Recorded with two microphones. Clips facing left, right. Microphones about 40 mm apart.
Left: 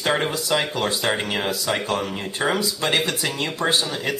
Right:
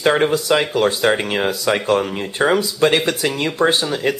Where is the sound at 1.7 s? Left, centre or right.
Right.